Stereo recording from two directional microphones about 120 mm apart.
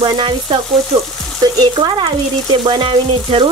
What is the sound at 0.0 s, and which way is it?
Frying, 40° right (ahead or behind).